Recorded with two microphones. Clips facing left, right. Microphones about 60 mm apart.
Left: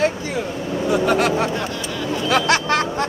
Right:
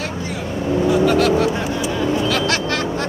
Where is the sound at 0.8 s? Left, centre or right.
Centre.